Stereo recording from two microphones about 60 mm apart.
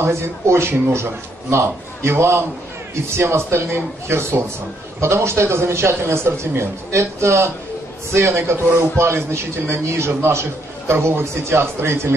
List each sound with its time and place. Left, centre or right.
0.0 s a man's voice: right